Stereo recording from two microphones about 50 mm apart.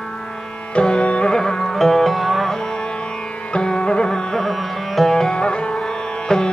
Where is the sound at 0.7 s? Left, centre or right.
Left; by 2.5 s centre.